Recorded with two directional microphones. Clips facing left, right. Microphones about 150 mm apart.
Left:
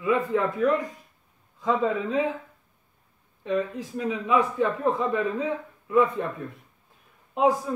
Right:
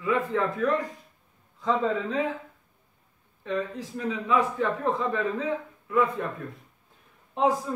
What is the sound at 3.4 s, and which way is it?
Speech, 15° left (ahead or behind).